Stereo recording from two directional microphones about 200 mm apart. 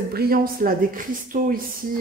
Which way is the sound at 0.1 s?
50° right (ahead or behind).